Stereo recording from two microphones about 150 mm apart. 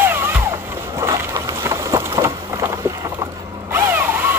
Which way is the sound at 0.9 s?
20° right (ahead or behind).